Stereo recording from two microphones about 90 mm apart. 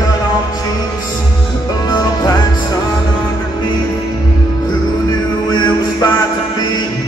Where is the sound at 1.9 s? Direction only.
50° left (ahead or behind).